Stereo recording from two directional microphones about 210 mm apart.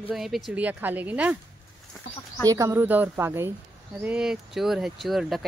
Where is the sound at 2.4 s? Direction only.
15° right (ahead or behind).